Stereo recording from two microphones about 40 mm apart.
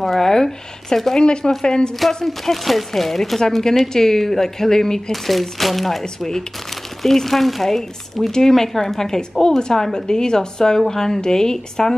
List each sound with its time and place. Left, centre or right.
0.0 s speech: centre
1.2 s a woman's voice: left
2.0 s speech: centre
5.1 s a woman's voice: centre